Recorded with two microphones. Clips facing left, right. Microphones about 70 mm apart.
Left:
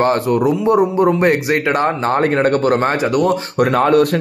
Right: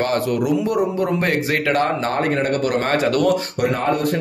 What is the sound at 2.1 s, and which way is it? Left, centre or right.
Speech, left.